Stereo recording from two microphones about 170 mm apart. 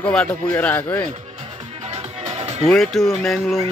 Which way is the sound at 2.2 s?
40° right (ahead or behind).